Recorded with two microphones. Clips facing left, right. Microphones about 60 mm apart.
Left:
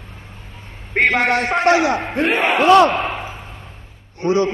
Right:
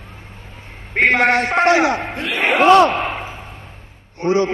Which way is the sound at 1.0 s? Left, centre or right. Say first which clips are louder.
Right 2 dB; right.